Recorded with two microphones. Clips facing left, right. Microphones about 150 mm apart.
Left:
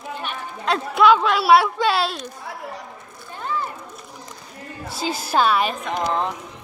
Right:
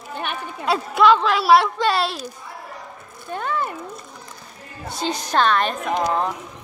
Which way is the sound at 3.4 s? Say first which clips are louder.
Right 2 dB; 65° right (ahead or behind).